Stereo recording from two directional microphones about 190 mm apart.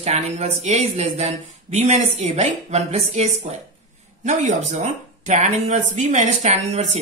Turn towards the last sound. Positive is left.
turn(degrees=-35)  # may be behind; listen again after turning